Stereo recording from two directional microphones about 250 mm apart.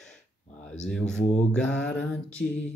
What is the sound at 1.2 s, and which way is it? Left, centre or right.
Mantra, left.